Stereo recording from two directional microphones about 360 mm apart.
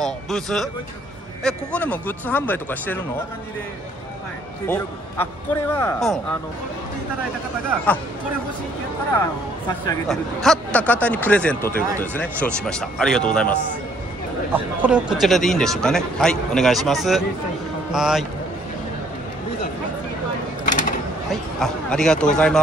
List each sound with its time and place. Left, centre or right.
0.0 s speech: centre
4.6 s speech: centre
10.0 s speech: centre
20.6 s a sound: left
21.3 s speech: centre